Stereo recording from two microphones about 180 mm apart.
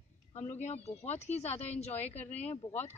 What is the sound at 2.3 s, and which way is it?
Speech, 35° left (ahead or behind).